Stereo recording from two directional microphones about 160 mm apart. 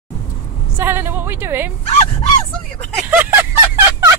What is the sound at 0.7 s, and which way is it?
Speech, 15° right (ahead or behind).